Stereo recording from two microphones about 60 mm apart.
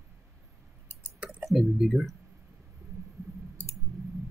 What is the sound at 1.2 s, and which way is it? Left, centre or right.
Clicking, right.